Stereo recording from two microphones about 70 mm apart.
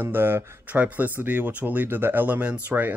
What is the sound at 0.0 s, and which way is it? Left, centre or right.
Speech, right.